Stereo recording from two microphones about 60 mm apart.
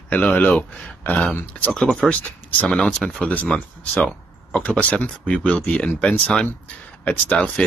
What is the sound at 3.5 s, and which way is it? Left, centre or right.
Speech, left.